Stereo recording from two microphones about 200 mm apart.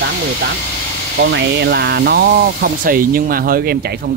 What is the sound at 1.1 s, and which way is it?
Speech, 60° right (ahead or behind).